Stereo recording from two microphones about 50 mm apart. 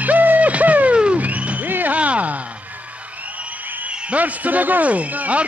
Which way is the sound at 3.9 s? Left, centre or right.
Right.